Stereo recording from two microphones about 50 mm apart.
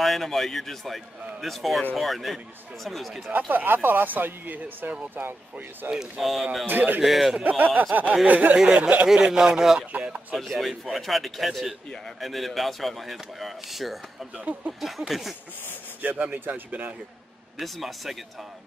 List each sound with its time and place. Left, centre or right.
0.0 s a man's voice: centre
3.3 s speech: right
5.9 s a man's voice: centre
6.7 s speech: right
7.0 s a man's voice: centre
7.4 s speech: right
9.0 s speech: centre
9.9 s speech: right
10.3 s a man's voice: centre
14.4 s speech: right
14.8 s a man's voice: centre
16.0 s speech: right
17.6 s a man's voice: centre